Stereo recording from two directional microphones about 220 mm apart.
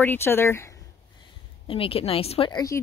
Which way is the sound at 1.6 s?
25° left (ahead or behind).